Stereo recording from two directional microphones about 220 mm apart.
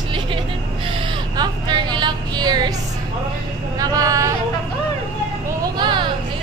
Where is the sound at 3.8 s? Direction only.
15° right (ahead or behind).